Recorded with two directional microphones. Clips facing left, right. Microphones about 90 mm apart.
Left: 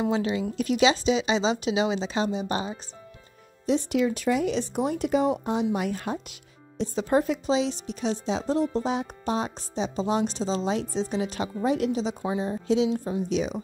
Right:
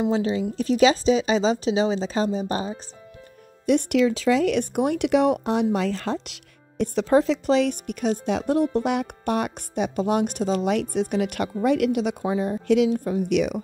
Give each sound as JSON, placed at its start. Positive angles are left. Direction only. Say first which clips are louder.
{"t": 0.1, "sound": "speech", "louder": "right 3 dB", "side_deg": -35}
{"t": 3.6, "sound": "speech", "louder": "right 4 dB", "side_deg": -70}
{"t": 12.9, "sound": "speech", "louder": "right 4 dB", "side_deg": -50}